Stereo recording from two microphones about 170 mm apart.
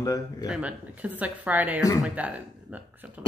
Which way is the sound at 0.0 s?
20° left (ahead or behind).